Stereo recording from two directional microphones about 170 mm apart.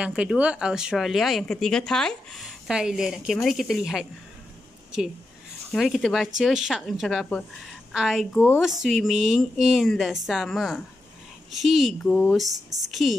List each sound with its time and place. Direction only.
0.0 s speech: 5° right (ahead or behind)
5.7 s speech: centre (ahead or behind)
12.4 s speech: 20° right (ahead or behind)
12.8 s speech: centre (ahead or behind)